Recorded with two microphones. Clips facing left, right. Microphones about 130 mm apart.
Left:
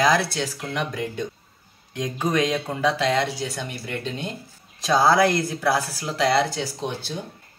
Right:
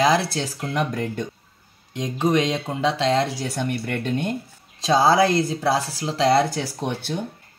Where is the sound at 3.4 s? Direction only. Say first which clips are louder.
Right 5 dB; 60° right (ahead or behind).